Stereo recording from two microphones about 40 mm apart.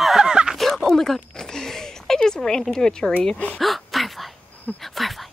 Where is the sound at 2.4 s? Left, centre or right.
Centre.